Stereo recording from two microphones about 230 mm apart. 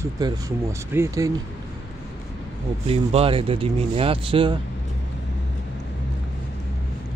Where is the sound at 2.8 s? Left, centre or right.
Right.